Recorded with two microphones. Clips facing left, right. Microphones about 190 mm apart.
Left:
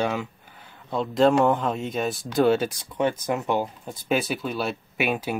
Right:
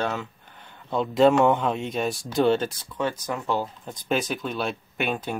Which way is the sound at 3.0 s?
20° left (ahead or behind).